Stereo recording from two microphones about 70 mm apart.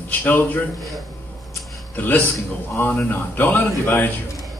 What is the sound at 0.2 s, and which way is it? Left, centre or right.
Speech, left.